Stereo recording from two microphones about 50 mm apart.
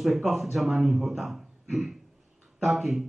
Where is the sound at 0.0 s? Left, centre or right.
Centre.